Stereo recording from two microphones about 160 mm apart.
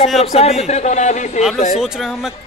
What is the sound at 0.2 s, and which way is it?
A man's voice, 40° left (ahead or behind).